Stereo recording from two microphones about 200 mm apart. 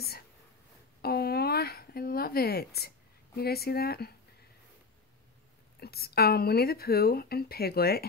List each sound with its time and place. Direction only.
1.0 s a sound: 50° left (ahead or behind)
3.3 s speech: 50° left (ahead or behind)
5.8 s speech: 50° left (ahead or behind)